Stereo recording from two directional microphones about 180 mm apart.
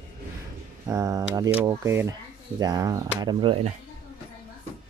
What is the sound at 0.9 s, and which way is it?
Speech, 20° right (ahead or behind).